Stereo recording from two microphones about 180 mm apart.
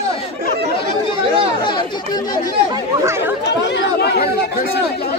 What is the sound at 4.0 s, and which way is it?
Chatter, 60° left (ahead or behind).